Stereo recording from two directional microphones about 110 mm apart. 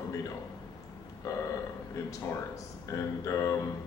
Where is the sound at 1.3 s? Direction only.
30° left (ahead or behind).